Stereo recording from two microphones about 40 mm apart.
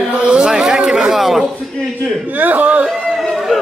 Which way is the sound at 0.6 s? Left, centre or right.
Centre.